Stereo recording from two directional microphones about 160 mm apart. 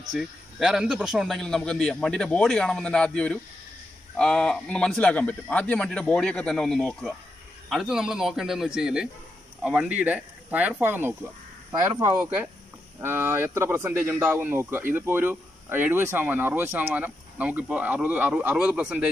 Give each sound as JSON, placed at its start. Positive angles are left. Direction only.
{"t": 0.1, "sound": "a man's voice", "side_deg": -5}